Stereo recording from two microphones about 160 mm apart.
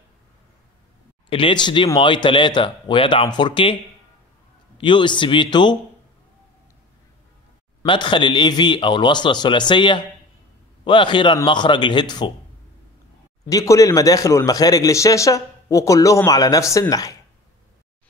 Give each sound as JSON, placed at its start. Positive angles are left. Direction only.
{"t": 1.3, "sound": "speech", "side_deg": 30}
{"t": 4.7, "sound": "a man's voice", "side_deg": 30}
{"t": 7.8, "sound": "a man's voice", "side_deg": 30}
{"t": 13.5, "sound": "a man's voice", "side_deg": 20}